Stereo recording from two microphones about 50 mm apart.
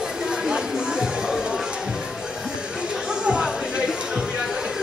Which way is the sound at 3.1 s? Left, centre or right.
Centre.